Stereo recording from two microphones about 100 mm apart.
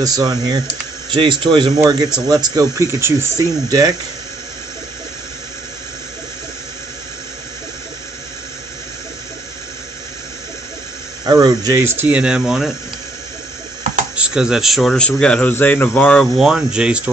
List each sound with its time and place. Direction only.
0.0 s speech: 40° right (ahead or behind)
1.1 s speech: 55° right (ahead or behind)
2.2 s speech: 40° right (ahead or behind)
3.3 s speech: 40° right (ahead or behind)
11.2 s speech: 45° right (ahead or behind)
11.7 s speech: 30° right (ahead or behind)
12.1 s speech: 10° right (ahead or behind)
14.1 s speech: 10° right (ahead or behind)
15.0 s speech: 10° left (ahead or behind)
16.3 s speech: 5° right (ahead or behind)